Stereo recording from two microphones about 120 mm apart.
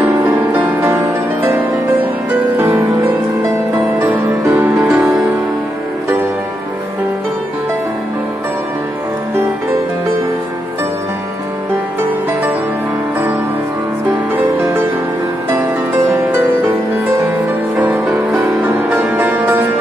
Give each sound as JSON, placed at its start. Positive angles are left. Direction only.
{"t": 0.0, "sound": "music", "side_deg": -10}
{"t": 0.7, "sound": "music", "side_deg": -20}
{"t": 4.0, "sound": "music", "side_deg": -15}
{"t": 4.7, "sound": "music", "side_deg": -5}
{"t": 16.1, "sound": "music", "side_deg": -15}
{"t": 18.4, "sound": "music", "side_deg": -15}